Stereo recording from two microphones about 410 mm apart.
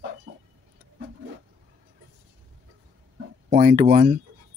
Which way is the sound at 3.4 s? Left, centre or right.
Centre.